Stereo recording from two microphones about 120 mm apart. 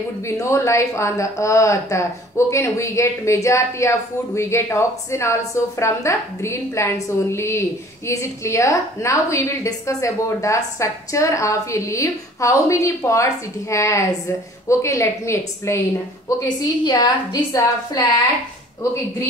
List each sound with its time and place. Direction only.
0.4 s a woman's voice: 25° left (ahead or behind)
16.8 s a woman's voice: 35° left (ahead or behind)